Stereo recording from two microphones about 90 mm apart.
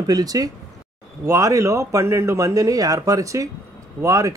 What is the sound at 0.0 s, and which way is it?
Speech, 45° right (ahead or behind).